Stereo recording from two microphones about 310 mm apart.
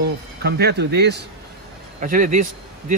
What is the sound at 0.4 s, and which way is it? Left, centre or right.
Speech, right.